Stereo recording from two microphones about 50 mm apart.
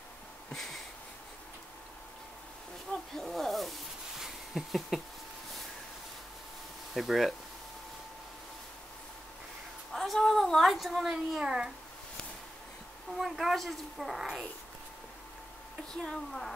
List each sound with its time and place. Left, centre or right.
0.6 s a sound: centre
2.9 s speech: left
3.3 s speech: centre
4.2 s a sound: centre
6.9 s speech: centre
9.9 s speech: centre
13.2 s speech: centre
15.9 s speech: centre